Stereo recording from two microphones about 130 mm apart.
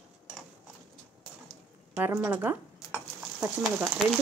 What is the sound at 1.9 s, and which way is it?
Speech, 15° right (ahead or behind).